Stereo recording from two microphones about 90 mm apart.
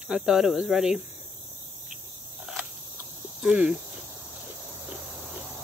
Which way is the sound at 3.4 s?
10° right (ahead or behind).